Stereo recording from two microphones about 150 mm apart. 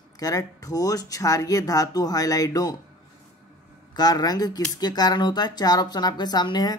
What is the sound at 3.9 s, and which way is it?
Speech, 25° left (ahead or behind).